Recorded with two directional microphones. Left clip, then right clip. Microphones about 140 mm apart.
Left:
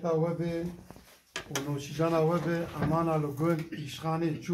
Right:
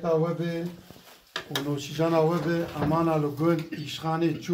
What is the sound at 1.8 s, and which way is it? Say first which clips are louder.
Speech: right 4 dB; 15° right (ahead or behind).